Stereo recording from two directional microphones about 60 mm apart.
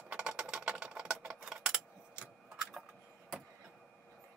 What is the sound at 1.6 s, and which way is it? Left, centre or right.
Mechanisms, centre.